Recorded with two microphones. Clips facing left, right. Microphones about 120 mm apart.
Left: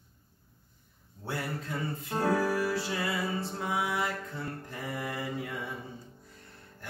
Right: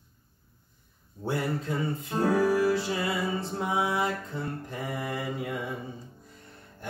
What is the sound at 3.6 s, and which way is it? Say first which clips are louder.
Speech: right 4 dB; 20° right (ahead or behind).